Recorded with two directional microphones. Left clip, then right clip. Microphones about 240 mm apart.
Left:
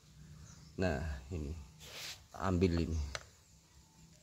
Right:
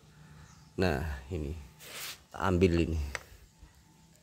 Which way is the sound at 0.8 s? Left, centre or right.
Right.